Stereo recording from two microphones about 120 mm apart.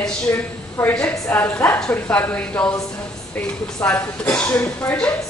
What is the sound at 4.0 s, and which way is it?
Speech, 10° left (ahead or behind).